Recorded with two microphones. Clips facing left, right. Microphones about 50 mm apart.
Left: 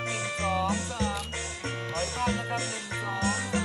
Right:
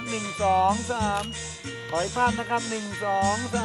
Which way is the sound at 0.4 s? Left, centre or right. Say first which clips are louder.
Right 8 dB; right.